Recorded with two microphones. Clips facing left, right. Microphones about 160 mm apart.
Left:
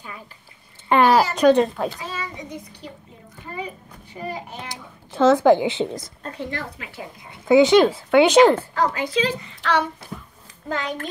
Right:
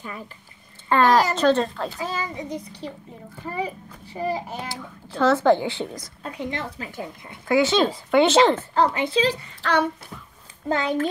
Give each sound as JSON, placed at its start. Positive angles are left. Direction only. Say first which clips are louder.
{"t": 0.8, "sound": "a sound", "louder": "left 2 dB", "side_deg": 15}
{"t": 1.3, "sound": "speech", "louder": "left 4 dB", "side_deg": 15}
{"t": 2.0, "sound": "a child's voice", "louder": "right 3 dB", "side_deg": -35}
{"t": 4.6, "sound": "speech", "louder": "right 2 dB", "side_deg": 20}
{"t": 6.2, "sound": "a woman's voice", "louder": "right 2 dB", "side_deg": -15}
{"t": 7.4, "sound": "speech", "louder": "left 6 dB", "side_deg": 20}
{"t": 8.7, "sound": "speech", "louder": "right 1 dB", "side_deg": -25}
{"t": 9.6, "sound": "speech", "louder": "even", "side_deg": -45}
{"t": 10.7, "sound": "speech", "louder": "right 4 dB", "side_deg": -25}